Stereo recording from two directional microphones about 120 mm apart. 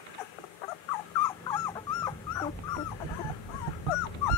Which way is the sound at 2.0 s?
30° left (ahead or behind).